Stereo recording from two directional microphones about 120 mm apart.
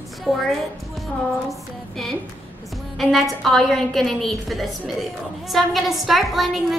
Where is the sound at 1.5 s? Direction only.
5° left (ahead or behind).